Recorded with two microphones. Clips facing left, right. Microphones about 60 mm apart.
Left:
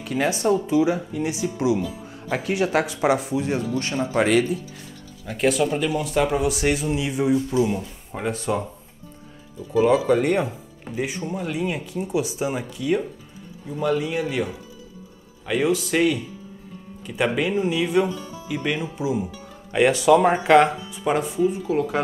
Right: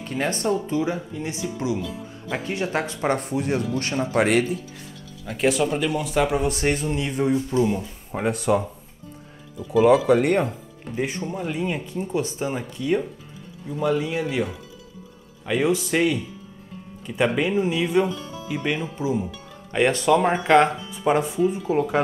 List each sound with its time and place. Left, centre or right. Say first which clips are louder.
0.0 s speech: left 3 dB; centre
10.0 s speech: right 1 dB; centre
15.4 s speech: even; centre
18.8 s speech: even; centre
21.6 s speech: right 1 dB; centre